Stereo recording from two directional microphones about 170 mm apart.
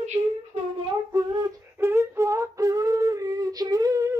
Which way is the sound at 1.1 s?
20° right (ahead or behind).